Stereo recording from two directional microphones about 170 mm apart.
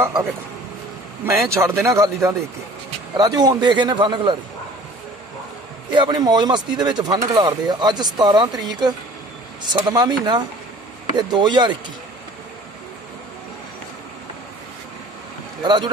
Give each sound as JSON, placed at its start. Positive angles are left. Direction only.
{"t": 0.0, "sound": "speech", "side_deg": -15}
{"t": 5.9, "sound": "speech", "side_deg": -25}
{"t": 15.6, "sound": "speech", "side_deg": -25}